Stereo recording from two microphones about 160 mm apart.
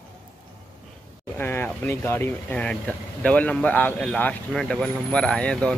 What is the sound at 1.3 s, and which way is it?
Speech, 15° left (ahead or behind).